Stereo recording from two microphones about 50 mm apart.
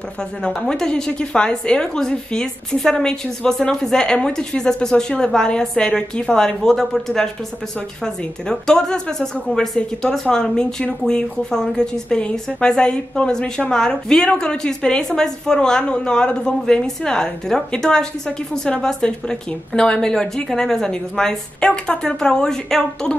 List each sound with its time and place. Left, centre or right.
0.4 s a woman's voice: centre